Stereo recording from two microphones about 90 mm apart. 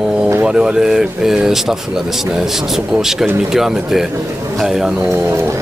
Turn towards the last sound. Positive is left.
turn(degrees=-5)  # may be behind; listen again after turning